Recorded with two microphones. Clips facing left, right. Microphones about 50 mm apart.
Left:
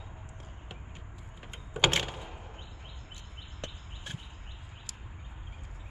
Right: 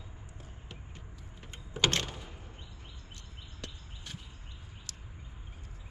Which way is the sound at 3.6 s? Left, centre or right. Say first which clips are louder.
Left 4 dB; left.